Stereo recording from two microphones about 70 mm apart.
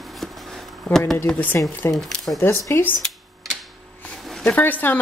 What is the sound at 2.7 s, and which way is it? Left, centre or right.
Speech, left.